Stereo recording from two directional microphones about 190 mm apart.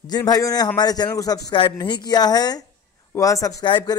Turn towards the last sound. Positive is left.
turn(degrees=25)  # may be behind; listen again after turning